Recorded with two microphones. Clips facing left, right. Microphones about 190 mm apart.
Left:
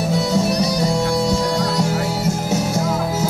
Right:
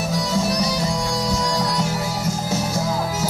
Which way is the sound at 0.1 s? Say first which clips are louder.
Left 4 dB; 25° left (ahead or behind).